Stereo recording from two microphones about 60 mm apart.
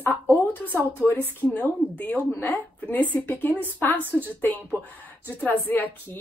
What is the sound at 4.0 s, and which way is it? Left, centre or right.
Speech, right.